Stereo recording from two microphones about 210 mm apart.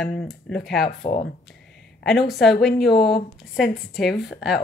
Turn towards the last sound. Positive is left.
turn(degrees=0)  # may be behind; listen again after turning